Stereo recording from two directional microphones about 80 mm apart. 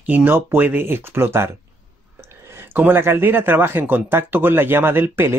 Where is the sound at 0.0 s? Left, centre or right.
Right.